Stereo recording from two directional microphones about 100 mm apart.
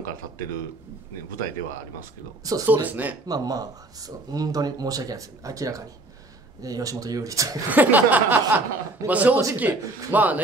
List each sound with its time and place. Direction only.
2.6 s a man's voice: 15° right (ahead or behind)
3.3 s speech: 40° right (ahead or behind)
7.7 s a man's voice: 15° right (ahead or behind)